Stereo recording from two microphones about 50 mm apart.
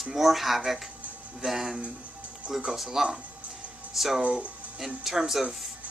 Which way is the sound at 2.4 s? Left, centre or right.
Centre.